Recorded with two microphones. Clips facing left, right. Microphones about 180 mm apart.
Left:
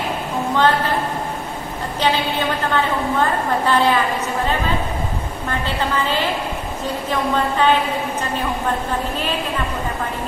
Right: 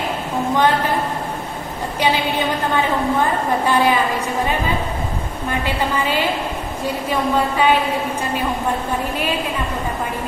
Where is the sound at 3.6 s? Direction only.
10° right (ahead or behind).